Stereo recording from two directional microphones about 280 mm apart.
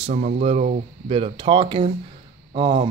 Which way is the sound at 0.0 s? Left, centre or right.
Right.